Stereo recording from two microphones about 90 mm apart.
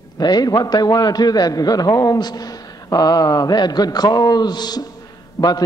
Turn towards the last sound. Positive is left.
turn(degrees=45)  # may be behind; listen again after turning